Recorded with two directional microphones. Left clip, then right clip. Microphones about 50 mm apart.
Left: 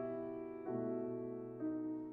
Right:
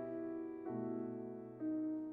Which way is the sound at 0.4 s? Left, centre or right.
Centre.